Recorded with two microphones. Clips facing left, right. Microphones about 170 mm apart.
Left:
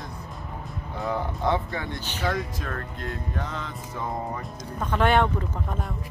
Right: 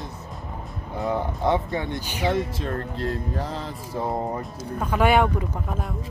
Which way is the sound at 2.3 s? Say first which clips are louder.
Right 4 dB; 25° right (ahead or behind).